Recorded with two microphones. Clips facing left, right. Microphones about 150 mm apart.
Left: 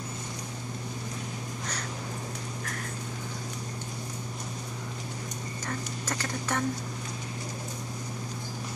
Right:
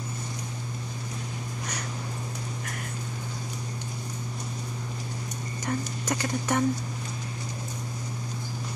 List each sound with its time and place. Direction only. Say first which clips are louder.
5.7 s speech: right 6 dB; 15° right (ahead or behind)